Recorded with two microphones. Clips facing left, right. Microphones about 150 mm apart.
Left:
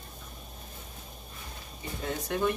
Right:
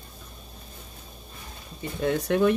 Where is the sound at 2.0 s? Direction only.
65° right (ahead or behind).